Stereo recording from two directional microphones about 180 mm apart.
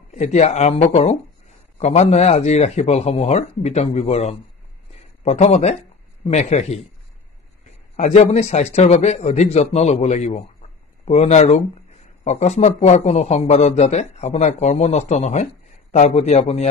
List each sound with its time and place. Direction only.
0.1 s speech: 40° left (ahead or behind)
7.9 s speech: 35° left (ahead or behind)